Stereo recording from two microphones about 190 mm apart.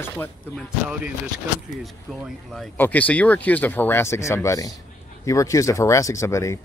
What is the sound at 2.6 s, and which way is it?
Speech, 10° left (ahead or behind).